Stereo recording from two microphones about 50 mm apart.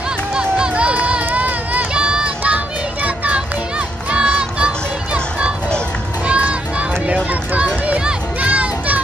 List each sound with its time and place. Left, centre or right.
0.3 s run: centre; by 1.9 s right
2.0 s child singing: centre
2.4 s music: right
6.2 s a sound: right
7.5 s a sound: right
8.4 s children playing: right